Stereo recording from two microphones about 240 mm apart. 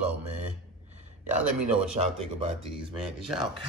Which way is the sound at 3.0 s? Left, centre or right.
Centre.